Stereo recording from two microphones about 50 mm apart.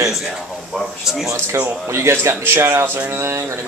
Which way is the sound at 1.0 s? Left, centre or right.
Centre.